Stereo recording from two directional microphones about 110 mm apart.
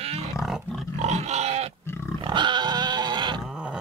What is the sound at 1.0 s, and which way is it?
Pig, 85° right.